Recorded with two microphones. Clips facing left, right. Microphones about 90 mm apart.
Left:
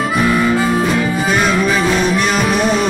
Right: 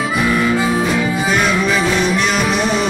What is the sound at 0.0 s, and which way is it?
Harmonica, centre (ahead or behind).